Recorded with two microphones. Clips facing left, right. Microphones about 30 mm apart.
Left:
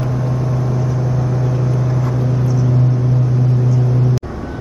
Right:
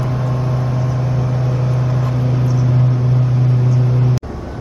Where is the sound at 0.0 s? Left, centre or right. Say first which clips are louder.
Even; right.